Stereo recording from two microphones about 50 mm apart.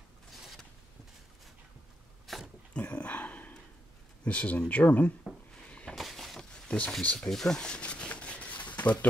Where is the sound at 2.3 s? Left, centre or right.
Centre.